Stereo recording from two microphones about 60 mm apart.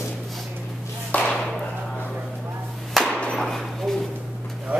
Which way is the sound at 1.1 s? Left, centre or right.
Left.